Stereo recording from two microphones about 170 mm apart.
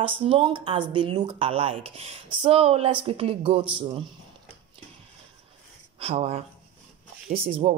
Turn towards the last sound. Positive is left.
turn(degrees=-35)  # may be behind; listen again after turning